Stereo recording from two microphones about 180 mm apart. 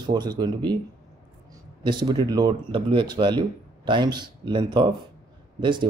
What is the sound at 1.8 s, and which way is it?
Speech, 25° right (ahead or behind).